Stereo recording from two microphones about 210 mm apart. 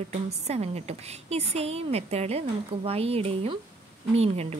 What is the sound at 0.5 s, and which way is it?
A woman's voice, 30° right (ahead or behind).